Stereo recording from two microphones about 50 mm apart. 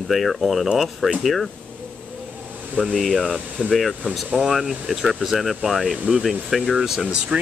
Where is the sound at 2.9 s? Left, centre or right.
Centre.